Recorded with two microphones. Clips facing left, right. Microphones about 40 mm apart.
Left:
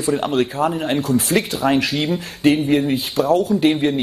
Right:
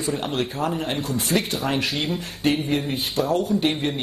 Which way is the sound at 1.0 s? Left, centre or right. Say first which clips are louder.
Left 5 dB; left.